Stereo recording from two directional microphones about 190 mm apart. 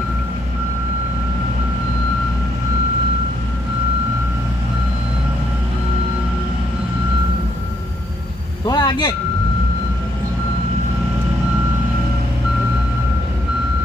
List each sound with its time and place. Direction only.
8.6 s vehicle: 20° left (ahead or behind)